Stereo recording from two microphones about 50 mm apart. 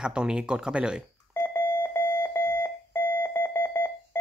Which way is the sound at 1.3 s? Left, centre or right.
Left.